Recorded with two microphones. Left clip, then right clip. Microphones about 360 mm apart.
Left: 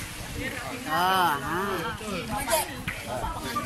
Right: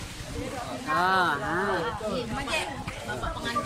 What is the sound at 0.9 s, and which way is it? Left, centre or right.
Speech, centre.